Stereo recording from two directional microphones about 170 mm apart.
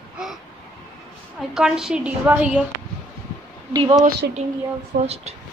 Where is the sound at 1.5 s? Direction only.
5° right (ahead or behind).